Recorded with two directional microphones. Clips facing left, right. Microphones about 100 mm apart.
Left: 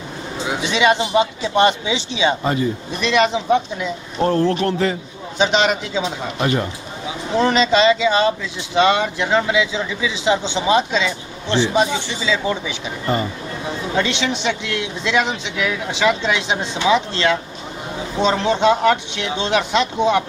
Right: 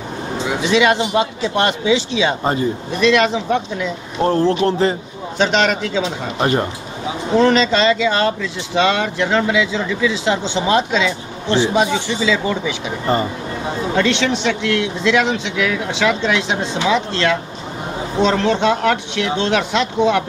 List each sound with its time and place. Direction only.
0.7 s speech: centre (ahead or behind)
4.2 s speech: 30° right (ahead or behind)
5.4 s a man's voice: 10° left (ahead or behind)
6.4 s speech: 40° right (ahead or behind)
7.3 s speech: 10° left (ahead or behind)
11.4 s speech: 40° right (ahead or behind)
11.7 s speech: centre (ahead or behind)
13.0 s speech: 30° right (ahead or behind)
13.9 s speech: 5° left (ahead or behind)